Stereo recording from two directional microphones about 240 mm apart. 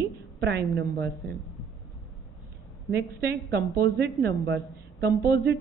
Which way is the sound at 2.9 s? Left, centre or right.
Right.